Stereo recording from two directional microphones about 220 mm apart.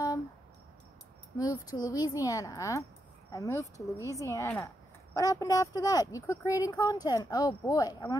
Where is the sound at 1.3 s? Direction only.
15° left (ahead or behind).